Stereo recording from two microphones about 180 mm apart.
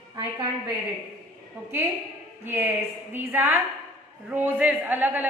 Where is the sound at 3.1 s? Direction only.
10° right (ahead or behind).